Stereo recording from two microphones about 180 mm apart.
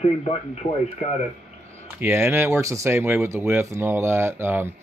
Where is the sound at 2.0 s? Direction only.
15° right (ahead or behind).